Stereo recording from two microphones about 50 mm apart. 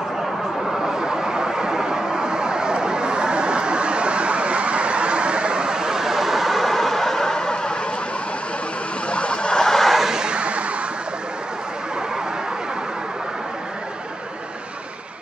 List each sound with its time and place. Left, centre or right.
0.7 s vehicle: centre
0.9 s vehicle: centre
9.1 s vehicle: left; by 10.0 s centre
10.0 s a sound: centre